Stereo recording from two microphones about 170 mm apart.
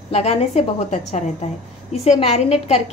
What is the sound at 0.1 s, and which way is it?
A woman's voice, 35° left (ahead or behind).